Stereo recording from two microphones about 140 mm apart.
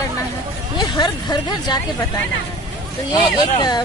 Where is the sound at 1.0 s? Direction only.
30° left (ahead or behind).